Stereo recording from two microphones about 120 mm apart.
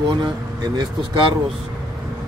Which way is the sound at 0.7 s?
40° right (ahead or behind).